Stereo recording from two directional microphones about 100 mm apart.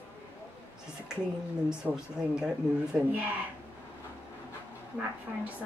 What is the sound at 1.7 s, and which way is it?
A woman's voice, 10° right (ahead or behind).